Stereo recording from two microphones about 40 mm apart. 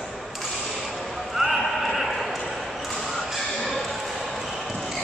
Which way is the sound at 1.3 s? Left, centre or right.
Centre.